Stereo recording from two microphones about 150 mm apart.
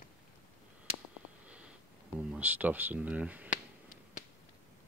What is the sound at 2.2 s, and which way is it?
Speech, 10° right (ahead or behind).